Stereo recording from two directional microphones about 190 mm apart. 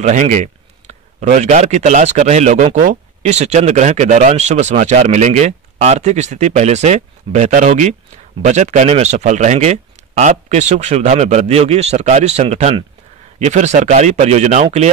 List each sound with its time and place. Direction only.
0.0 s speech: 40° right (ahead or behind)